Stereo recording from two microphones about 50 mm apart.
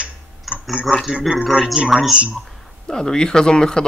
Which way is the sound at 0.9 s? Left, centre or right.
Centre.